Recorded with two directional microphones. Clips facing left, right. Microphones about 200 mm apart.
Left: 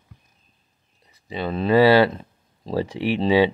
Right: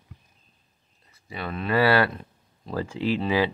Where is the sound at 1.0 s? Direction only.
15° left (ahead or behind).